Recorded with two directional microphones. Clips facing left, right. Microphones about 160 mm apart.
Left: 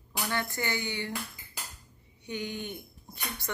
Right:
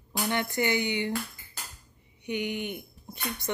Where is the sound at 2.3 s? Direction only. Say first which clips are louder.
Right 5 dB; 15° right (ahead or behind).